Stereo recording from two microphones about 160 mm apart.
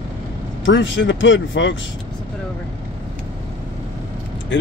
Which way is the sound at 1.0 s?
90° left.